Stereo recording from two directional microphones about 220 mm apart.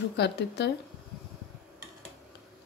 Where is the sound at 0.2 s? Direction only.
50° left (ahead or behind).